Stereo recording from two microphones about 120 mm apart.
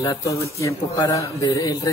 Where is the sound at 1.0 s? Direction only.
35° left (ahead or behind).